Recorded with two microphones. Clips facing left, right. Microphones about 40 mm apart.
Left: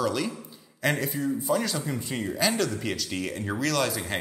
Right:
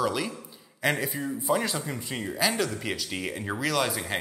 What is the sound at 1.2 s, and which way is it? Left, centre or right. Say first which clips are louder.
Speech: left 1 dB; centre.